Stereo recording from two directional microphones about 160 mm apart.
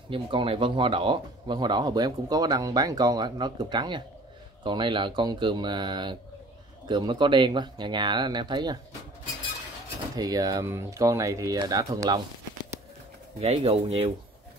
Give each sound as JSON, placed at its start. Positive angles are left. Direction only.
{"t": 0.1, "sound": "speech", "side_deg": -35}
{"t": 10.1, "sound": "speech", "side_deg": -25}
{"t": 13.4, "sound": "speech", "side_deg": -40}